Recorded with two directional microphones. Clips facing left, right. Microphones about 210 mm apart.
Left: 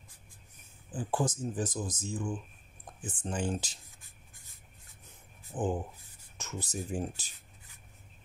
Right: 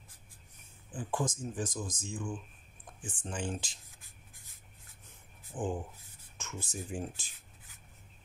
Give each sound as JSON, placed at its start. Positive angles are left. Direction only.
{"t": 0.9, "sound": "speech", "side_deg": 35}
{"t": 5.5, "sound": "speech", "side_deg": 35}